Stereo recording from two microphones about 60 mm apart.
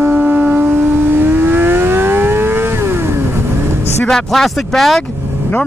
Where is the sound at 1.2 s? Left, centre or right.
Right.